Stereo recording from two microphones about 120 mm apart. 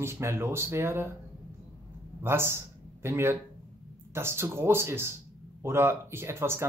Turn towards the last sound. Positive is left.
turn(degrees=-20)  # may be behind; listen again after turning